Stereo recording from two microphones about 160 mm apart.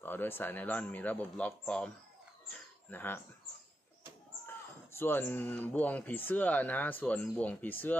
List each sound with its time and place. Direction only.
0.0 s speech: 15° left (ahead or behind)
4.5 s speech: 15° left (ahead or behind)